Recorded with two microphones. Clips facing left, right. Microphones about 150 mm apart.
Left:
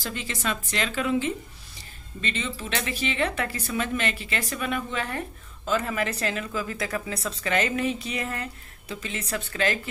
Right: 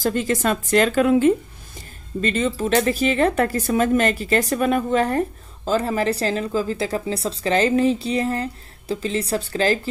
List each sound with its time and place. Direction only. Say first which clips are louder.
0.0 s speech: right 11 dB; 45° right (ahead or behind)